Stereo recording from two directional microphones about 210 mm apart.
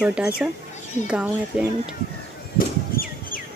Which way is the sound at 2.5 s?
40° left (ahead or behind).